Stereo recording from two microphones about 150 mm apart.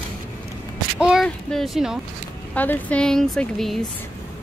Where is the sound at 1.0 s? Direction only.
Centre (ahead or behind).